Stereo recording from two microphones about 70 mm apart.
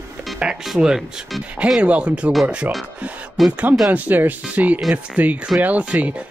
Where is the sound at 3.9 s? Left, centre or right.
Right.